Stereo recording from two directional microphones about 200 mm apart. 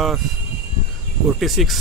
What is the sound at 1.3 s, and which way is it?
Speech, centre (ahead or behind).